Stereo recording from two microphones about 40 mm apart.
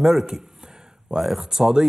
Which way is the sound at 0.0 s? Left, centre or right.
Centre.